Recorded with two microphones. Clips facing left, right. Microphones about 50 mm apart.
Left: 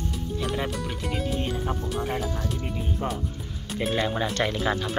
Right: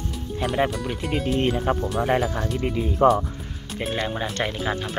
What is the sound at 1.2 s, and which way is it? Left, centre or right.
Speech, right.